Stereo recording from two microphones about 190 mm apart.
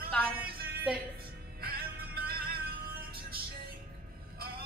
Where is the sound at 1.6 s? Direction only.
50° right (ahead or behind).